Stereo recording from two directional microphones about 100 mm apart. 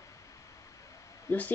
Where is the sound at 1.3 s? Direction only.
25° left (ahead or behind).